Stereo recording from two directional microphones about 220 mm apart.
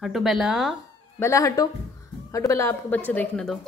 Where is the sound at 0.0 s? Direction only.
Centre (ahead or behind).